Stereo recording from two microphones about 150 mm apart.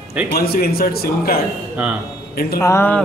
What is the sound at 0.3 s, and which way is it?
A man's voice, 90° left.